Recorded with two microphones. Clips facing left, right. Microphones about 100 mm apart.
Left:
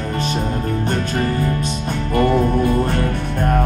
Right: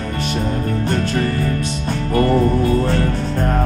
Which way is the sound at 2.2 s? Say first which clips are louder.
Right 1 dB; 15° left (ahead or behind).